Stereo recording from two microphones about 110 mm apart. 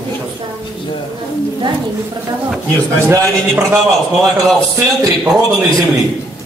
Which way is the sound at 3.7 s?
5° right (ahead or behind).